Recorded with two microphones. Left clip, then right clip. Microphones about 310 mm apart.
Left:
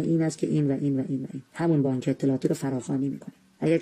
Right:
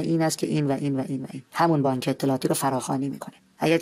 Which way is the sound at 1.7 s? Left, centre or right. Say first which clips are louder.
Right 2 dB; right.